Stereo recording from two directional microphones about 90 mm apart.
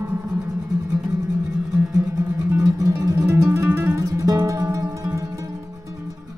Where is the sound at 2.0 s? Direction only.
35° right (ahead or behind).